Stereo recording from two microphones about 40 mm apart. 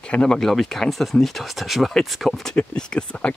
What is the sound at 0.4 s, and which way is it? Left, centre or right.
Speech, centre.